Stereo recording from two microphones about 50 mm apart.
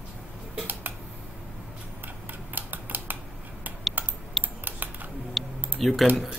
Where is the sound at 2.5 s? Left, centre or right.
Right.